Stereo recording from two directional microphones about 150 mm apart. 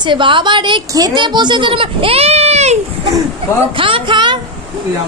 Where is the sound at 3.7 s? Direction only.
35° right (ahead or behind).